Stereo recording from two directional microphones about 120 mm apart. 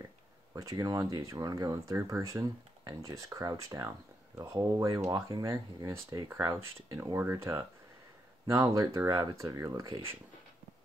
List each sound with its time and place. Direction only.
0.5 s speech: 25° right (ahead or behind)